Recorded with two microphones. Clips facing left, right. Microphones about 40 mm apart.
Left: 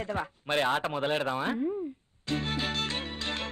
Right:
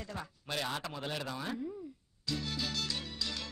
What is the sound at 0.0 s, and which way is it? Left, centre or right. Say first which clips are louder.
Speech: left 10 dB; left.